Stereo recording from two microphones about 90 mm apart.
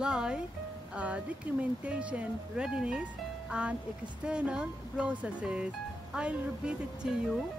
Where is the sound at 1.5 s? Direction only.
15° right (ahead or behind).